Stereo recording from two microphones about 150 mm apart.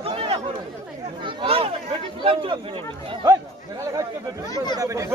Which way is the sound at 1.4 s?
40° right (ahead or behind).